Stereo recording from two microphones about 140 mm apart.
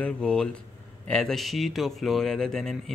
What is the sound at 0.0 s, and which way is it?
A man's voice, 5° left (ahead or behind).